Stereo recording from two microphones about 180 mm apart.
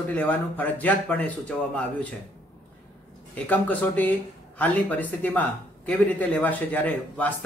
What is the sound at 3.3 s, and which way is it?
A man's voice, 10° left (ahead or behind).